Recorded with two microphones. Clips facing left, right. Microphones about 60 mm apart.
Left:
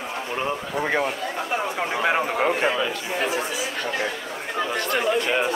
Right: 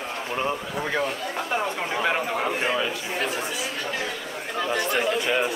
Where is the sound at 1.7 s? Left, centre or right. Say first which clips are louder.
Left 2 dB; centre.